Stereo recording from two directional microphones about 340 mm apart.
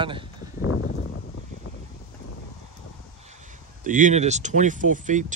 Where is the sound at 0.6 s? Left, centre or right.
Left.